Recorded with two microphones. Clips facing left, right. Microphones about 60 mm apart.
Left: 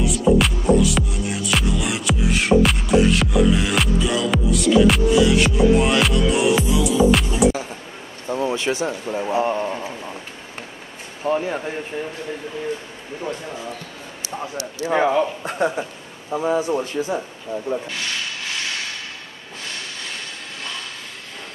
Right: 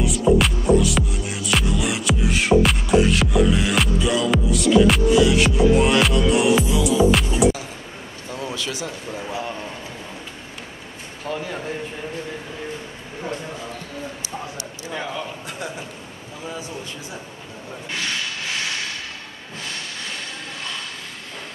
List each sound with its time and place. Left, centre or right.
0.0 s music: centre
8.3 s a sound: left
9.3 s a man's voice: left
11.2 s speech: left
14.9 s a man's voice: left